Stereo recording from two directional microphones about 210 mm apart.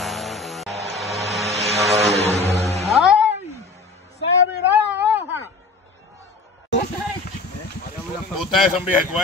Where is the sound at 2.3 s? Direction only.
15° right (ahead or behind).